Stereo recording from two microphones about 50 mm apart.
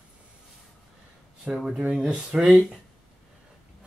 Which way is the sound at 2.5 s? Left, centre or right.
Centre.